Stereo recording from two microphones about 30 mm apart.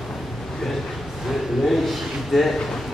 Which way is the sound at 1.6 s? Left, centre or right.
Centre.